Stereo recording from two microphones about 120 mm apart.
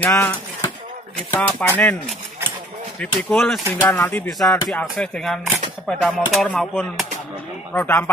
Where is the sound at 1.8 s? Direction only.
10° left (ahead or behind).